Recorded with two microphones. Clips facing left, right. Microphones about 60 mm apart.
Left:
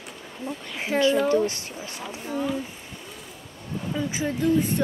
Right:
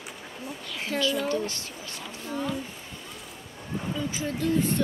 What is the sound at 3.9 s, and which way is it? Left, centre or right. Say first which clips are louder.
Speech: left 5 dB; centre.